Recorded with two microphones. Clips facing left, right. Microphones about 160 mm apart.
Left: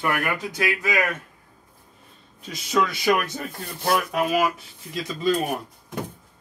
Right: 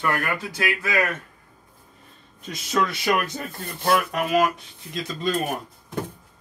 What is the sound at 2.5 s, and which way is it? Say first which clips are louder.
Speech: left 1 dB; centre (ahead or behind).